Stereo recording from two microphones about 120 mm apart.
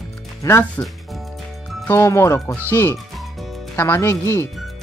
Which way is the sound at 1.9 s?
25° left (ahead or behind).